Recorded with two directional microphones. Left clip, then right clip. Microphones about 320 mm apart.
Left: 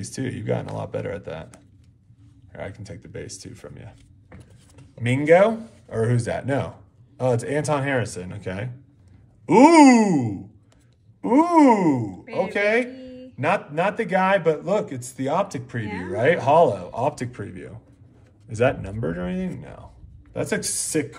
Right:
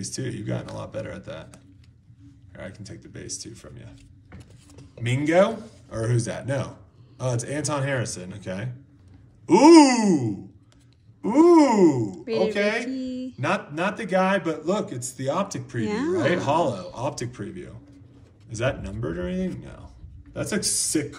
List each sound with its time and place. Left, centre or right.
0.0 s a man's voice: left
2.6 s a man's voice: centre
5.0 s a man's voice: left
12.9 s a sound: centre
13.4 s a man's voice: left